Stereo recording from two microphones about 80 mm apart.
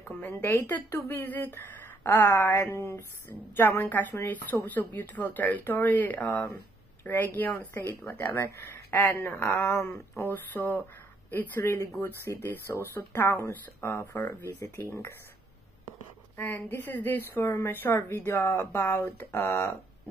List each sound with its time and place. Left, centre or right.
0.2 s a woman's voice: left
9.0 s speech: left
9.3 s a woman's voice: left
16.3 s a woman's voice: left